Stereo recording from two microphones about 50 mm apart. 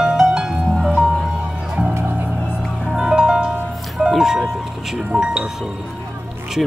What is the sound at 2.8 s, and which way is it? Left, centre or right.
Music, centre.